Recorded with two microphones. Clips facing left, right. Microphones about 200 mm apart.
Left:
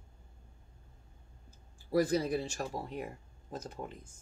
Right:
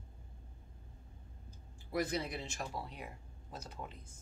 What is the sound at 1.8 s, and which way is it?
Speech, 40° left (ahead or behind).